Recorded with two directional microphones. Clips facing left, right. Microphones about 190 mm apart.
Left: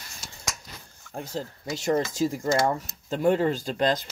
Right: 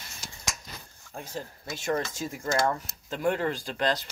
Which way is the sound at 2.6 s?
20° left (ahead or behind).